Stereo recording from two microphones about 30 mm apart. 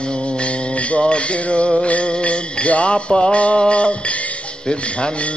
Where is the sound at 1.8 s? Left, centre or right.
Left.